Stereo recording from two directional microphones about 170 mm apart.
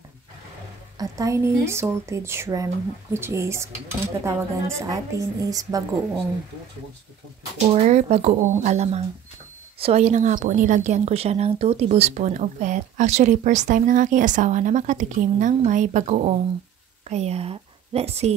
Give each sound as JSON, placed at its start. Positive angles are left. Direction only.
{"t": 0.9, "sound": "a woman's voice", "side_deg": -20}
{"t": 7.7, "sound": "speech", "side_deg": -40}